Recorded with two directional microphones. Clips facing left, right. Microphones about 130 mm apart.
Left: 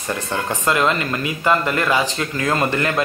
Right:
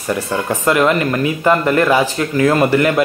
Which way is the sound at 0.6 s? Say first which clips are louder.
Right 5 dB; 20° right (ahead or behind).